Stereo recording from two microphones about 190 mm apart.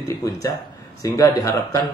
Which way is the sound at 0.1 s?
15° left (ahead or behind).